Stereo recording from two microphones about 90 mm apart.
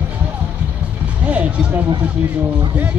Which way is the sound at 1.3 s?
15° right (ahead or behind).